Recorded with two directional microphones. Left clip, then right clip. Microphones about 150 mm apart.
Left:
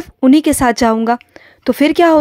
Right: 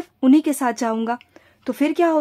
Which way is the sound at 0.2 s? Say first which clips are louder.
Left 6 dB; 30° left (ahead or behind).